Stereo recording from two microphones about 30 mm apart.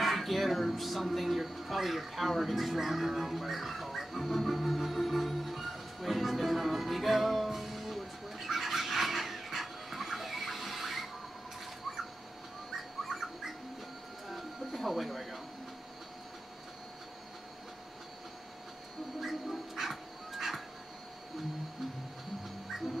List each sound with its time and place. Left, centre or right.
0.0 s speech: centre
1.0 s a sound: centre
13.1 s bird: centre
14.3 s music: centre
19.1 s music: centre
22.7 s dog: centre